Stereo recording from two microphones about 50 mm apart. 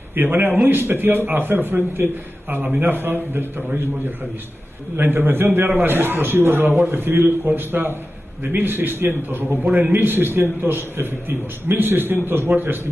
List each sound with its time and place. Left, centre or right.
0.1 s a man's voice: right
4.9 s a man's voice: right
9.9 s a man's voice: right